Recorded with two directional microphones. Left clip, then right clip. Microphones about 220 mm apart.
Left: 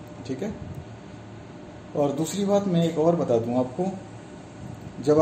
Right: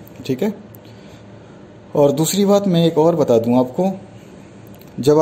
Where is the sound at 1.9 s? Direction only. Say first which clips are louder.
Right 10 dB; 45° right (ahead or behind).